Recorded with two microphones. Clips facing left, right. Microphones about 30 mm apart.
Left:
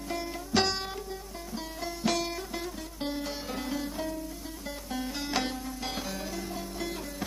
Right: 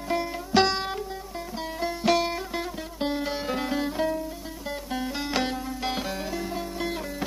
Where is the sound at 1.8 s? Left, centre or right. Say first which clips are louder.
Right 7 dB; right.